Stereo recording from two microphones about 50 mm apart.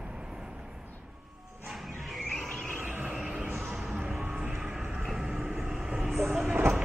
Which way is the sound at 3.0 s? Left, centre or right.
Centre.